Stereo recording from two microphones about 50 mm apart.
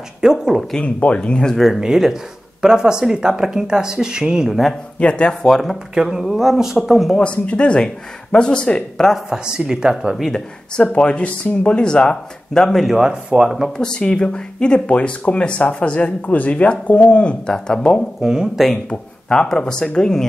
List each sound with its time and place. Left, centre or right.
0.2 s speech: centre
0.7 s speech: left
1.8 s speech: centre
4.9 s speech: left
5.5 s speech: centre
5.9 s speech: centre
7.2 s speech: left
9.3 s speech: centre
10.3 s speech: centre
12.9 s speech: centre
13.7 s speech: centre
18.2 s speech: centre
18.9 s speech: centre